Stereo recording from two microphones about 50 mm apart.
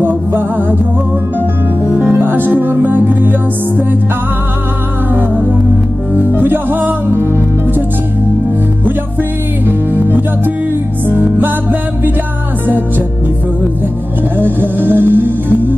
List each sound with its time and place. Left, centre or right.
0.0 s music: right
1.9 s music: right
5.1 s music: right
9.7 s music: right
14.4 s music: right